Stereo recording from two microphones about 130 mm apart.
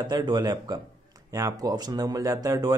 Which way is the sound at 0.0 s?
35° right (ahead or behind).